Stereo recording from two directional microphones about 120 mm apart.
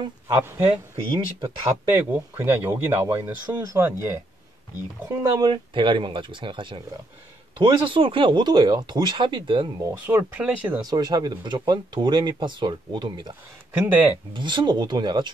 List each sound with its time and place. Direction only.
0.4 s speech: 20° right (ahead or behind)
0.7 s speech: 45° right (ahead or behind)
2.0 s speech: 15° right (ahead or behind)
5.5 s speech: 45° right (ahead or behind)
10.0 s speech: 15° right (ahead or behind)
10.8 s speech: 35° right (ahead or behind)
13.7 s speech: 15° right (ahead or behind)
14.3 s speech: 40° right (ahead or behind)